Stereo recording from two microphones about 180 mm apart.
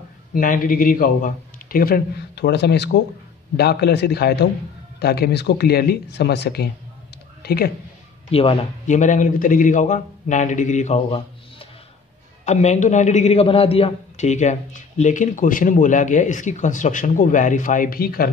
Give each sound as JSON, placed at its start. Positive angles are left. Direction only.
{"t": 0.3, "sound": "a man's voice", "side_deg": 50}
{"t": 8.3, "sound": "a man's voice", "side_deg": 35}
{"t": 12.4, "sound": "a man's voice", "side_deg": 40}